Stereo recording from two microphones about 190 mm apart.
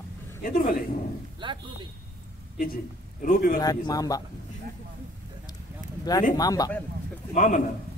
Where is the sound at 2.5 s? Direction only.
50° left (ahead or behind).